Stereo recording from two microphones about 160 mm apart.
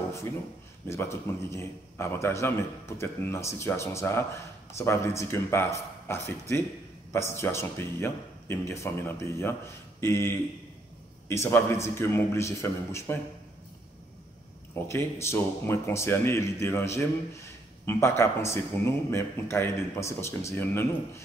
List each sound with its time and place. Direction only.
0.8 s a man's voice: 15° left (ahead or behind)
14.9 s a man's voice: 15° left (ahead or behind)